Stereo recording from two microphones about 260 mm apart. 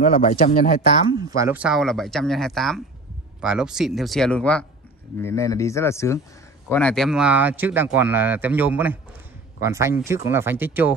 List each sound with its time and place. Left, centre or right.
0.1 s a man's voice: left
1.3 s speech: centre